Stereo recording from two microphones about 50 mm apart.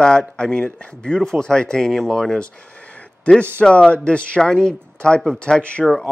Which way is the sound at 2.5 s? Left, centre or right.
Left.